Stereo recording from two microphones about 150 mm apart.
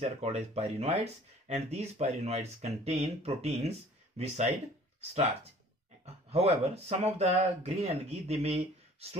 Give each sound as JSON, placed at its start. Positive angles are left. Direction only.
{"t": 0.0, "sound": "speech", "side_deg": -45}